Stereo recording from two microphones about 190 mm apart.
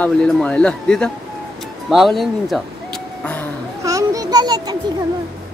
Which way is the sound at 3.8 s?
15° right (ahead or behind).